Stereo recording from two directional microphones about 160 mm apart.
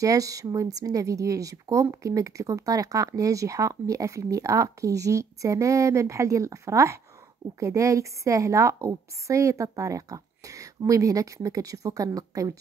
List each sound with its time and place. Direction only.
0.0 s speech: 20° right (ahead or behind)